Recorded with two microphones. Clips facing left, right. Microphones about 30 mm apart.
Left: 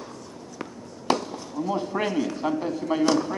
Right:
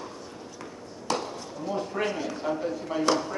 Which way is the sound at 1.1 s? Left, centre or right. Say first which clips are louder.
Left 5 dB; left.